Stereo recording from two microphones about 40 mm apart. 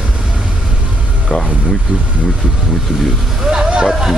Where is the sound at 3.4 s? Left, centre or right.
Centre.